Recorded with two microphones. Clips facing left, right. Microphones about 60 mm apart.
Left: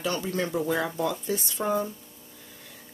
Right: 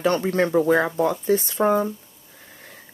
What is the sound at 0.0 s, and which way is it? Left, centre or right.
Speech, right.